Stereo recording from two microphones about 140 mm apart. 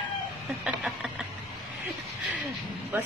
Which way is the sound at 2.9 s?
15° right (ahead or behind).